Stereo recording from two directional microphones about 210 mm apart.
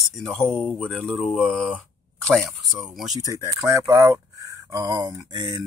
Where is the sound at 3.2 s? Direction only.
15° right (ahead or behind).